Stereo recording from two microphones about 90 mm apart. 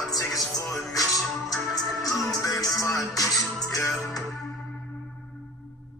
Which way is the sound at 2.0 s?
40° left (ahead or behind).